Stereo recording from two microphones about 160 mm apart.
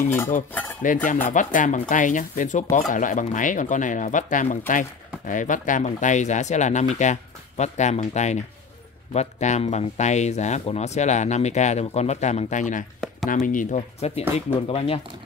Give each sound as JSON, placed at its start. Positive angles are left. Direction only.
{"t": 0.0, "sound": "stir", "side_deg": 15}
{"t": 0.8, "sound": "speech", "side_deg": 55}